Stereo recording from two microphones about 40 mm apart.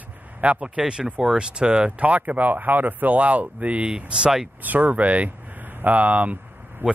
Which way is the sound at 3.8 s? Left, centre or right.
Right.